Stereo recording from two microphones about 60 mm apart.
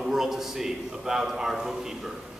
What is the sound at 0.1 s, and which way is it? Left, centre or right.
A man's voice, centre.